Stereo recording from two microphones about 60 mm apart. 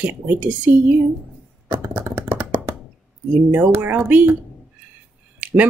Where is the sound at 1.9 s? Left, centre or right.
Right.